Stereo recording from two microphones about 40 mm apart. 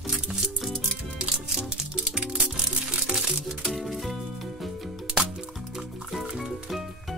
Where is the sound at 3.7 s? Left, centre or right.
Centre.